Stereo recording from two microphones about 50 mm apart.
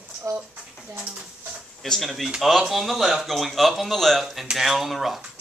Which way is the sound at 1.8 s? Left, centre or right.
Centre.